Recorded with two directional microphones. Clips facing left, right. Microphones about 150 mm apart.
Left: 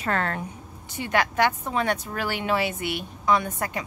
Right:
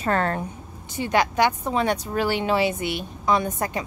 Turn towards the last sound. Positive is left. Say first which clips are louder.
# right 1 dB
turn(degrees=-25)  # may be behind; listen again after turning